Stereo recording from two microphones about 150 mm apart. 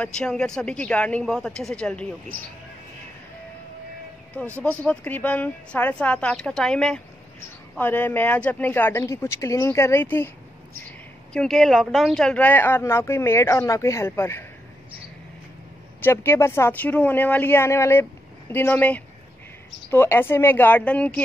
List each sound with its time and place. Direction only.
0.0 s a woman's voice: 5° left (ahead or behind)
4.6 s speech: 10° left (ahead or behind)
11.3 s speech: centre (ahead or behind)
16.0 s speech: 15° left (ahead or behind)